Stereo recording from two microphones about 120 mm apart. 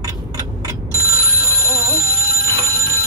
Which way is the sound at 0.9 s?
25° right (ahead or behind).